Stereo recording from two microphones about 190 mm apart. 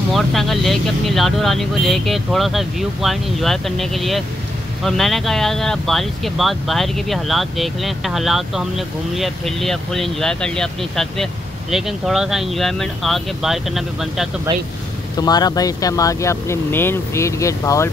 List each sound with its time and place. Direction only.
0.1 s speech: centre (ahead or behind)
15.1 s speech: 20° left (ahead or behind)